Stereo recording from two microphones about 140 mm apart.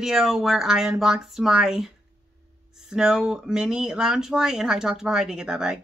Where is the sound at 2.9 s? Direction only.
5° right (ahead or behind).